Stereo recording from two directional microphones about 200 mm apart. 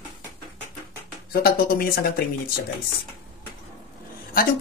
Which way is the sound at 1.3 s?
50° left (ahead or behind).